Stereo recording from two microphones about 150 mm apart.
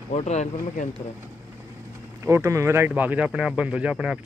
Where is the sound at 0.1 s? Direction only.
50° left (ahead or behind).